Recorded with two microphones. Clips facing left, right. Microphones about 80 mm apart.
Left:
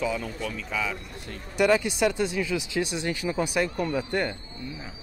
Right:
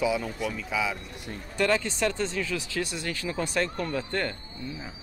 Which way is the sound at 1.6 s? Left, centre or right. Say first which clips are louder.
Left 4 dB; centre.